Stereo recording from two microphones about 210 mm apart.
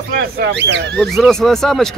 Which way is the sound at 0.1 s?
50° right (ahead or behind).